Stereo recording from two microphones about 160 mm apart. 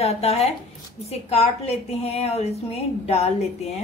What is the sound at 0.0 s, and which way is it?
A woman's voice, 40° left (ahead or behind).